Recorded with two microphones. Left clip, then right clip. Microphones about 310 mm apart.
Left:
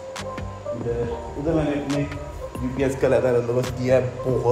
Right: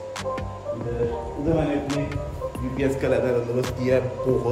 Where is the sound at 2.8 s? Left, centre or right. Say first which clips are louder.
Left 3 dB; centre.